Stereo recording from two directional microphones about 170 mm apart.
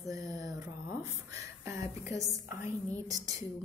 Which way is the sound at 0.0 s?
20° right (ahead or behind).